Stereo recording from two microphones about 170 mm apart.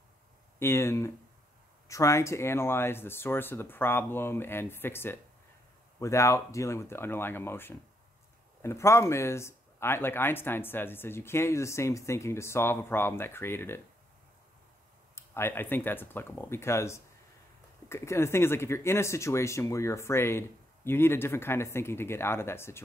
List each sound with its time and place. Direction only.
0.6 s speech: 15° left (ahead or behind)
15.1 s speech: 15° left (ahead or behind)